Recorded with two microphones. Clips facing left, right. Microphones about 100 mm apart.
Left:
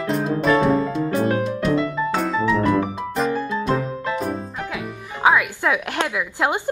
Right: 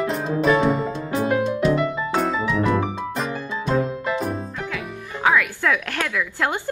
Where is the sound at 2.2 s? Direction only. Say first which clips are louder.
Left 4 dB; centre (ahead or behind).